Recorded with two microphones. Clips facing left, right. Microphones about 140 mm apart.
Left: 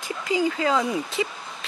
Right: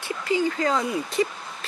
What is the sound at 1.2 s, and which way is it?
Speech, 5° left (ahead or behind).